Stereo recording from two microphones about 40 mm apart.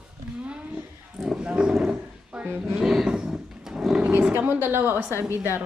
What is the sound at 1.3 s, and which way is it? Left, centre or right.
A woman's voice, right.